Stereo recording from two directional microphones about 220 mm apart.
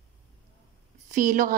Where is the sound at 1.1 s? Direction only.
35° right (ahead or behind).